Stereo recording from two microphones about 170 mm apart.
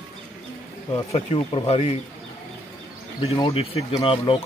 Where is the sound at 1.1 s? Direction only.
35° left (ahead or behind).